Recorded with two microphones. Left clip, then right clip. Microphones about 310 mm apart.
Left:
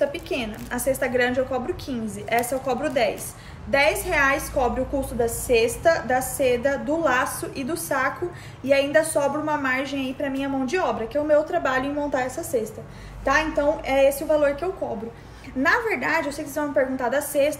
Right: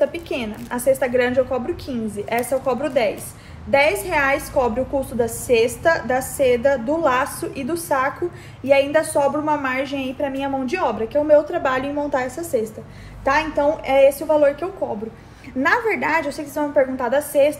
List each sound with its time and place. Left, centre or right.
0.0 s a woman's voice: centre